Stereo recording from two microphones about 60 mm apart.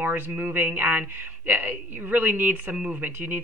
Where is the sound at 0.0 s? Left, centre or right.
Right.